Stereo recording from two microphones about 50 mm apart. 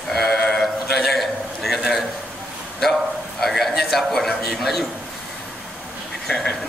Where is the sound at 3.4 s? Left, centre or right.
Centre.